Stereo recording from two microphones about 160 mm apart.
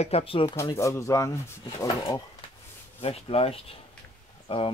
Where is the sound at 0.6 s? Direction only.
20° left (ahead or behind).